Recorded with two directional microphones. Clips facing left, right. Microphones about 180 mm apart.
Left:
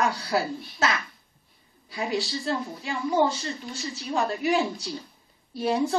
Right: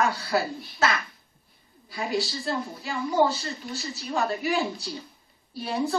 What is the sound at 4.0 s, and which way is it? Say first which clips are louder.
Speech: left 1 dB; centre (ahead or behind).